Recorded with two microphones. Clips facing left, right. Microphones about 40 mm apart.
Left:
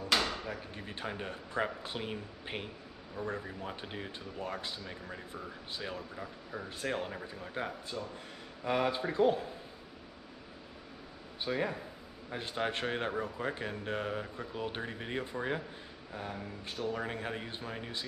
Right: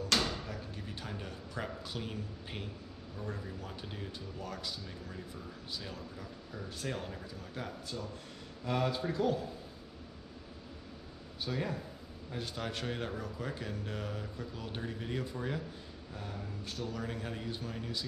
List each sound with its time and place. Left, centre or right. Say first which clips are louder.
0.3 s drawer open or close: left 2 dB; left
0.8 s speech: left 8 dB; left
11.4 s speech: left 3 dB; left
16.1 s speech: left 4 dB; centre